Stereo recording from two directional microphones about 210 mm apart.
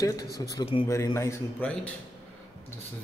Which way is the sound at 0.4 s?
20° left (ahead or behind).